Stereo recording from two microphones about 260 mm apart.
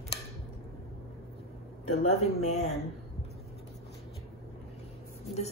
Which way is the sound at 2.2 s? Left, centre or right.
Left.